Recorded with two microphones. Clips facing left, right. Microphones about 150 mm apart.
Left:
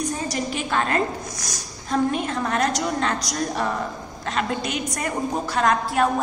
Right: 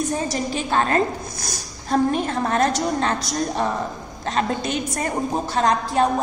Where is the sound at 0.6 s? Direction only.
35° right (ahead or behind).